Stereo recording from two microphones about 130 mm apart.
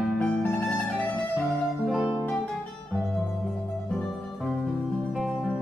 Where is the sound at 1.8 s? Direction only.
5° right (ahead or behind).